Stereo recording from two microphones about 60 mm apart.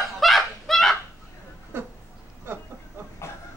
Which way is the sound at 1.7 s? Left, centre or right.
Right.